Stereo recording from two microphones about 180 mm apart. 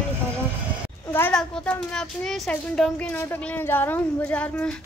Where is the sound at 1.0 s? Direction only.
10° left (ahead or behind).